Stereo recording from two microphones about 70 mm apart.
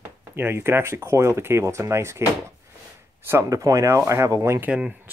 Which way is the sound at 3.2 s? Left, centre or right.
Right.